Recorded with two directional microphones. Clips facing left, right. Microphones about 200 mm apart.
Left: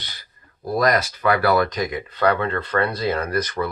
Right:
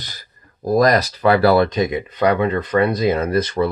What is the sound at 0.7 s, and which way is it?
Speech, 35° right (ahead or behind).